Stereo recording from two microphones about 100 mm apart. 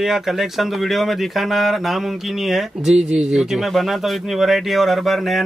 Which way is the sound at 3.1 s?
5° right (ahead or behind).